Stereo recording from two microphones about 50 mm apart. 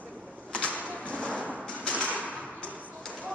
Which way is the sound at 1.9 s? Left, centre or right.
Left.